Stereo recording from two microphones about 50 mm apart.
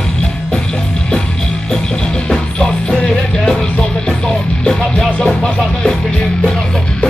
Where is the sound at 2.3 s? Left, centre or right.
Centre.